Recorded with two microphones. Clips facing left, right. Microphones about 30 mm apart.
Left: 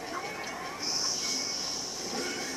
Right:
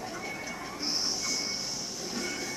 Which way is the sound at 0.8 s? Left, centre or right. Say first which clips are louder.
Right 2 dB; right.